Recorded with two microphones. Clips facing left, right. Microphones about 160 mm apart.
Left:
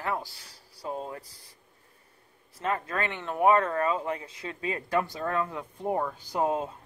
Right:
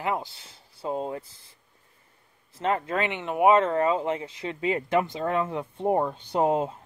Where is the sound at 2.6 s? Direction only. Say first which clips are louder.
Right 4 dB; 25° right (ahead or behind).